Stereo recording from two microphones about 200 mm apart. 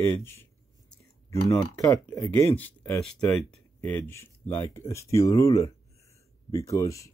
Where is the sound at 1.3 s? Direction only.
15° left (ahead or behind).